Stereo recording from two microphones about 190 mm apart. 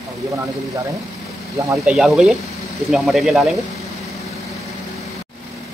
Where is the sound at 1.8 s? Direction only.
5° right (ahead or behind).